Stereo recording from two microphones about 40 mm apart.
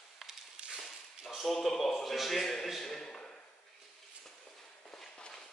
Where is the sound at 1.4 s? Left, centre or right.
Centre.